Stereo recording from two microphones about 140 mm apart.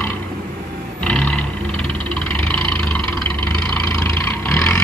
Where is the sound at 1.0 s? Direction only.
5° left (ahead or behind).